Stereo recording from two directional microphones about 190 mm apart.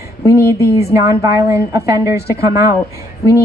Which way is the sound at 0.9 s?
15° right (ahead or behind).